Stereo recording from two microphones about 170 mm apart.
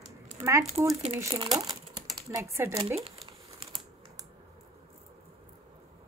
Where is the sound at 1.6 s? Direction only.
25° right (ahead or behind).